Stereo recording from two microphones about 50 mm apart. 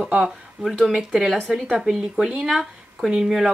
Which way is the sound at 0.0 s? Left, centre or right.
Centre.